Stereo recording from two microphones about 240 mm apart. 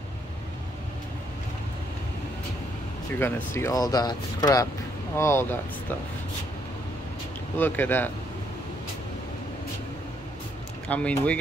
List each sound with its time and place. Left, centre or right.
3.1 s speech: centre
7.5 s speech: centre
10.9 s speech: centre